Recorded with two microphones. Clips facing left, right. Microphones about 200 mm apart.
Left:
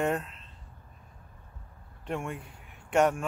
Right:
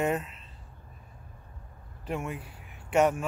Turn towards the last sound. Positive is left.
turn(degrees=0)  # may be behind; listen again after turning